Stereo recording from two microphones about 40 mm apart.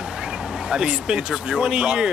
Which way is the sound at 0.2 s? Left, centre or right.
Centre.